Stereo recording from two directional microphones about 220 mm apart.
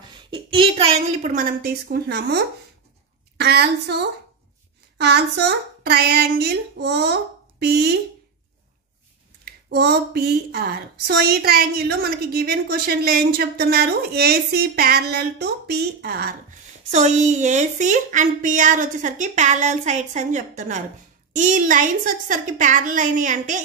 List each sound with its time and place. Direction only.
0.1 s a woman's voice: 20° right (ahead or behind); by 7.9 s 45° right (ahead or behind)
9.4 s a woman's voice: 45° right (ahead or behind)
16.9 s a woman's voice: 30° right (ahead or behind)